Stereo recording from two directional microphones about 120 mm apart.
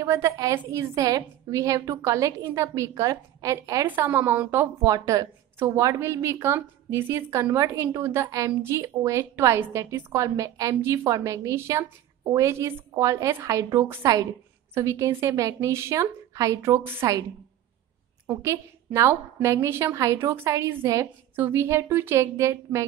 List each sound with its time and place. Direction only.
0.0 s a woman's voice: 25° right (ahead or behind)
3.8 s a woman's voice: 15° right (ahead or behind)
18.2 s a woman's voice: 25° right (ahead or behind)